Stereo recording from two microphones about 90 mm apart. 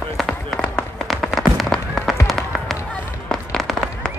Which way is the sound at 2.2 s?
Centre (ahead or behind).